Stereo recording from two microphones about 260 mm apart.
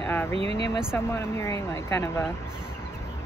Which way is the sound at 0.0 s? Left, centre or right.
Centre.